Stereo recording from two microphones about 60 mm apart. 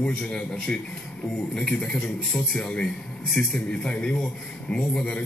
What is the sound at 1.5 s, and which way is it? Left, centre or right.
A man's voice, centre.